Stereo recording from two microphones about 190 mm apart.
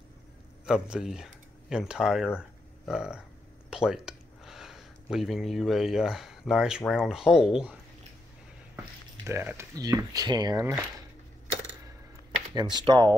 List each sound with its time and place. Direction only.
0.7 s speech: 5° right (ahead or behind)
8.7 s speech: 10° right (ahead or behind)
12.5 s speech: 20° right (ahead or behind)